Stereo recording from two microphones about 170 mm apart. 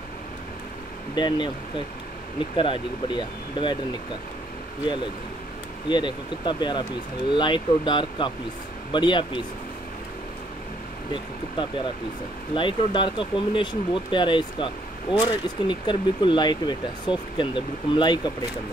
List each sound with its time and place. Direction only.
1.1 s speech: 25° left (ahead or behind)
2.5 s speech: 30° left (ahead or behind)
5.9 s speech: 25° left (ahead or behind)
12.5 s speech: 30° left (ahead or behind)